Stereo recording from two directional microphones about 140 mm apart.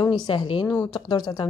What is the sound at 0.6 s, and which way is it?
Speech, 25° left (ahead or behind).